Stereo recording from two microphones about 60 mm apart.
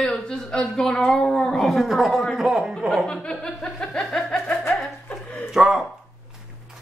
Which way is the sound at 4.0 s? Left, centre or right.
Centre.